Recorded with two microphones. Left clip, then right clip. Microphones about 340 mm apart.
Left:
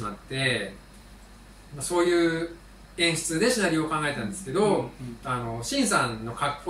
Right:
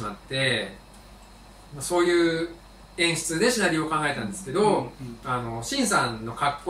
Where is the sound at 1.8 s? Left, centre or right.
Centre.